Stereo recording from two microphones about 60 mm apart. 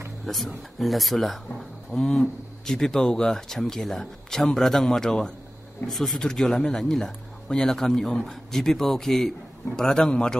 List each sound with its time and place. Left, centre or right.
0.3 s speech: centre